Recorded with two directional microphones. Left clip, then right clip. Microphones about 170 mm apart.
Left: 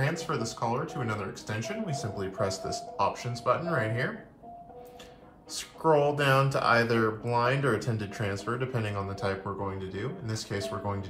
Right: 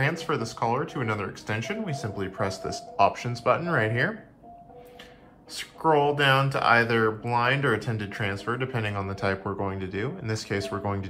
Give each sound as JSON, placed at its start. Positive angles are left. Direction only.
{"t": 0.0, "sound": "speech", "side_deg": 25}
{"t": 5.5, "sound": "speech", "side_deg": 25}